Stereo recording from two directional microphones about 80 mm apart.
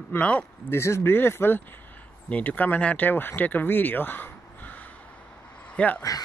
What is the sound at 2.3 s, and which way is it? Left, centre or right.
Speech, centre.